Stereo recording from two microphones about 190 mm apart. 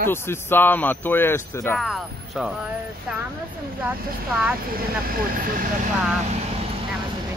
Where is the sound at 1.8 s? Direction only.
Centre (ahead or behind).